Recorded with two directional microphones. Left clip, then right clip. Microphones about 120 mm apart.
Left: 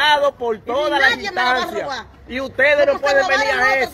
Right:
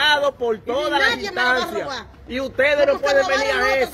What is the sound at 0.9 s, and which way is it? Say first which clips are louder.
Speech: left 3 dB; 35° right (ahead or behind).